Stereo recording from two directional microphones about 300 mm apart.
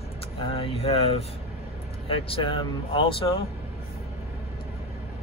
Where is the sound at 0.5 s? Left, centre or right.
Centre.